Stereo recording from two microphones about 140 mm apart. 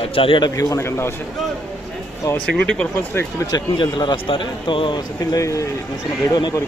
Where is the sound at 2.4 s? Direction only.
5° left (ahead or behind).